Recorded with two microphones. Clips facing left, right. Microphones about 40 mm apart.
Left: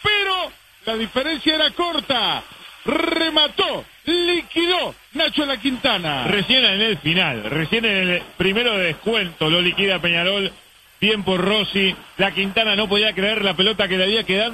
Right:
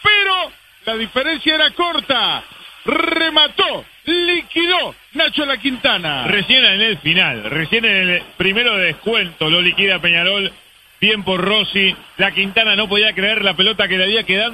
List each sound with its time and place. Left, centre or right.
0.0 s speech: right